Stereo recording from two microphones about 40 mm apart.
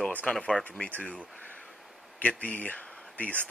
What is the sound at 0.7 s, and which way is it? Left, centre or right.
Speech, left.